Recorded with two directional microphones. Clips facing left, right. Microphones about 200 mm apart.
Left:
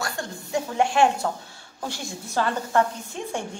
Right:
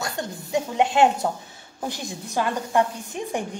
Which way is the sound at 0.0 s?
20° right (ahead or behind).